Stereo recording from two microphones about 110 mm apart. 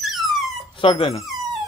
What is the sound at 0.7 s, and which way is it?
Speech, 50° left (ahead or behind).